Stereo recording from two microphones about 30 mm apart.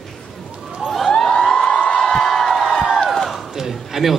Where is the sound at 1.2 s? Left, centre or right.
Centre.